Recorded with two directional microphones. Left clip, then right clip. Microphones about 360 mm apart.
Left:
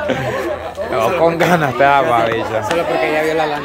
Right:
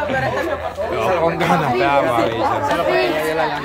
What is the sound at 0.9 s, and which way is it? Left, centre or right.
A man's voice, centre.